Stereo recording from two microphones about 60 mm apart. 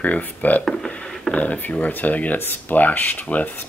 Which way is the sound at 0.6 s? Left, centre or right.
Centre.